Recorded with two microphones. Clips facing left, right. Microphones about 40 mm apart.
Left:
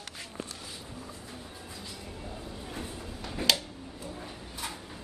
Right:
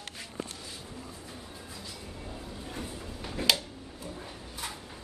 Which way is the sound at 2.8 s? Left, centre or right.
Centre.